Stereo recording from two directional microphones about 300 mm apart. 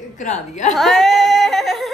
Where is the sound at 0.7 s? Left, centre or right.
Centre.